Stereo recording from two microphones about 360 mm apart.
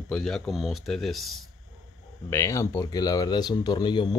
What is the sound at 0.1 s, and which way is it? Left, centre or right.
Speech, centre.